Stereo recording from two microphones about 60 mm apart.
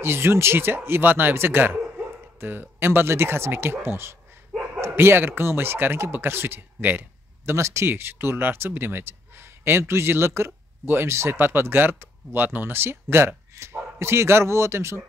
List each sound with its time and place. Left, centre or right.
0.0 s speech: right
6.9 s a sound: right
7.5 s speech: right
7.9 s speech: right